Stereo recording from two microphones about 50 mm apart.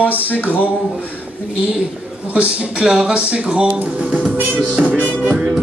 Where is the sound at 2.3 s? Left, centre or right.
Centre.